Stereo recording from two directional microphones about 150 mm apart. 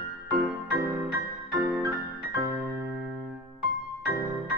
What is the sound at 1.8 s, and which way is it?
Music, 20° right (ahead or behind).